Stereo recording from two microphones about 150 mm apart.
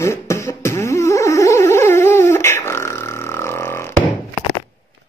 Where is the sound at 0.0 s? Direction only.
20° left (ahead or behind).